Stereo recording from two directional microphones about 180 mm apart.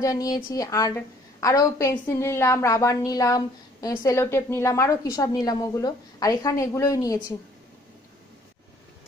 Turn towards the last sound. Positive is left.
turn(degrees=20)  # may be behind; listen again after turning